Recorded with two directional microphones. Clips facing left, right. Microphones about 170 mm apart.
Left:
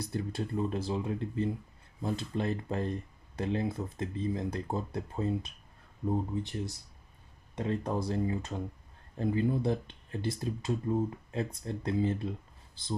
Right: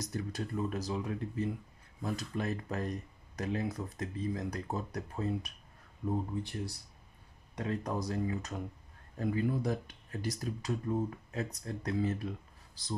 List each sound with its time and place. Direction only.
0.0 s speech: 30° left (ahead or behind)